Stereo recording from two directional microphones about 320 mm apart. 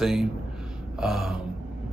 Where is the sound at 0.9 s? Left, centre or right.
Centre.